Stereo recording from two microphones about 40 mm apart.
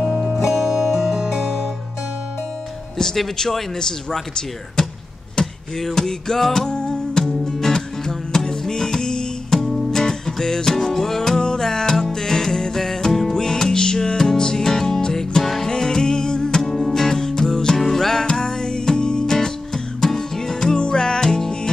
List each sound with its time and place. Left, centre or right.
0.5 s music: centre
3.0 s speech: centre
5.3 s a sound: centre
6.7 s music: left
16.6 s music: centre